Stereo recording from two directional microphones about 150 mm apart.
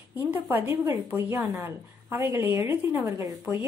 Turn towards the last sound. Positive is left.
turn(degrees=-5)  # may be behind; listen again after turning